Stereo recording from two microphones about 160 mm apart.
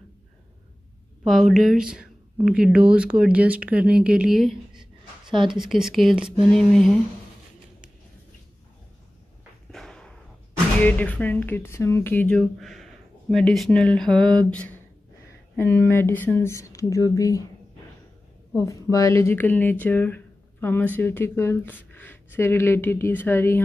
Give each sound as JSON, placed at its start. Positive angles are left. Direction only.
{"t": 1.2, "sound": "speech", "side_deg": 0}
{"t": 9.7, "sound": "a sound", "side_deg": 5}
{"t": 10.8, "sound": "speech", "side_deg": 10}
{"t": 18.5, "sound": "speech", "side_deg": 20}